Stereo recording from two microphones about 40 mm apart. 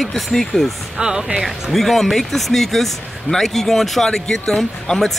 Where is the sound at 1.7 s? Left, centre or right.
Centre.